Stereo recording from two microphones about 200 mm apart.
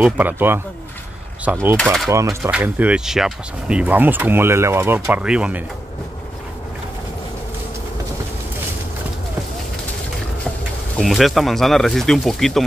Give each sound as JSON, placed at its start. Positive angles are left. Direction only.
{"t": 0.0, "sound": "speech", "side_deg": -10}
{"t": 11.0, "sound": "speech", "side_deg": 0}